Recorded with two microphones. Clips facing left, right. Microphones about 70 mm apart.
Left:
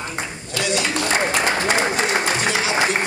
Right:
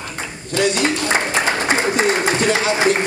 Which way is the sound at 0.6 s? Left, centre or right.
Right.